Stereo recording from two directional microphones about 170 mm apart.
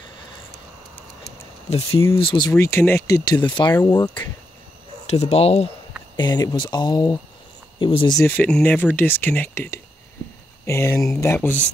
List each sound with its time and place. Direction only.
1.7 s speech: 35° left (ahead or behind)
2.5 s speech: 15° left (ahead or behind); by 5.7 s 40° left (ahead or behind)
6.1 s speech: 25° left (ahead or behind)
8.2 s speech: 10° left (ahead or behind)